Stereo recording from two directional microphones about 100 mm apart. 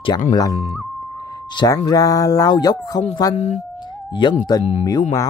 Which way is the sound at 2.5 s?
40° left (ahead or behind).